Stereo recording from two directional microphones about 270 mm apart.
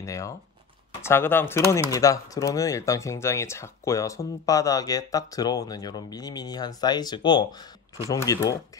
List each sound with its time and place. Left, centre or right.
0.0 s speech: centre